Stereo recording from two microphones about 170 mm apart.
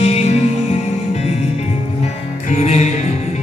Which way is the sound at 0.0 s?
40° left (ahead or behind).